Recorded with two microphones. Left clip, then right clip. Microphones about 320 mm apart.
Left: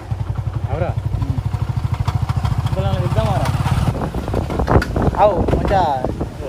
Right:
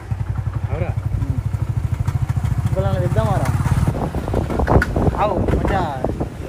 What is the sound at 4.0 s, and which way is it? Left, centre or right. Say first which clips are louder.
Wind noise: even; centre.